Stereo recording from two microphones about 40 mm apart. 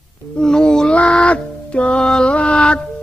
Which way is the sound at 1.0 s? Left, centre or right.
Left.